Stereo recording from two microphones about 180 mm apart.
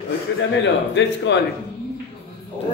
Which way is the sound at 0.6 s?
80° left.